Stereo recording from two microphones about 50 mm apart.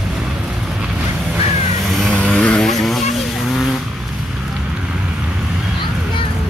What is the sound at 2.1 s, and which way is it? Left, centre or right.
Vehicle, left.